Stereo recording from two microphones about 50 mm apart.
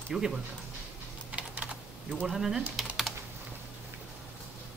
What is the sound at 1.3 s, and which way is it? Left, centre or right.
Typing, right.